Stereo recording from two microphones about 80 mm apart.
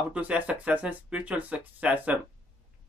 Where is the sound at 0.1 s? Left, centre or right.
Centre.